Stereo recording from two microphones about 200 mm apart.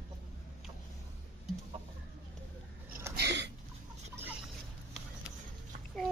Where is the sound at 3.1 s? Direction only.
60° right (ahead or behind).